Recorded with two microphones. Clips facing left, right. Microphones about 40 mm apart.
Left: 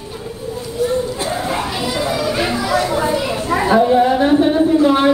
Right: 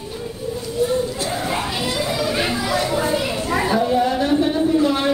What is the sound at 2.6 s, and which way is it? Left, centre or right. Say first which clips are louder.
Children playing: left 4 dB; centre.